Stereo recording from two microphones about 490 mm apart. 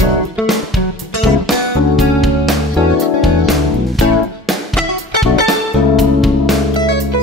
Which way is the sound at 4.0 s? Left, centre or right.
Centre.